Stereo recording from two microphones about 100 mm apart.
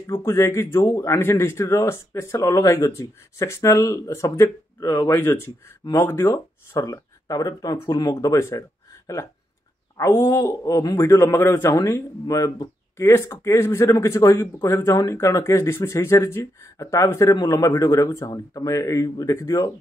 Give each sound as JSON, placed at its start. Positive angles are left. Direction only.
{"t": 0.0, "sound": "speech", "side_deg": 30}
{"t": 7.7, "sound": "speech", "side_deg": 25}